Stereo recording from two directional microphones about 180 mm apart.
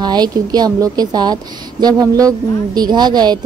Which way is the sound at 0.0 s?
25° right (ahead or behind).